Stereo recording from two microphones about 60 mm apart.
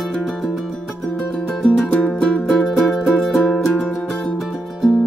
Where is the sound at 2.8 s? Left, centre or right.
Centre.